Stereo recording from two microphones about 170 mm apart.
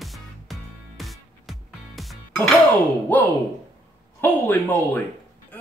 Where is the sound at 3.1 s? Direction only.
10° left (ahead or behind).